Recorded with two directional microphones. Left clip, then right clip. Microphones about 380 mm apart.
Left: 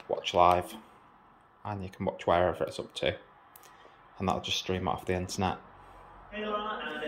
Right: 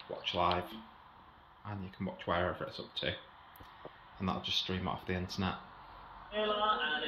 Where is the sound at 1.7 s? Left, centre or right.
Centre.